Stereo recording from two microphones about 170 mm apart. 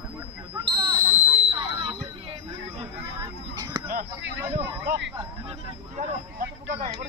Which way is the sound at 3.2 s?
25° right (ahead or behind).